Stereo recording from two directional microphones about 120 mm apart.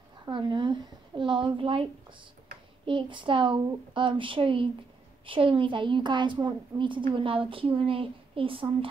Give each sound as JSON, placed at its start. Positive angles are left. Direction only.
{"t": 0.2, "sound": "a woman's voice", "side_deg": -40}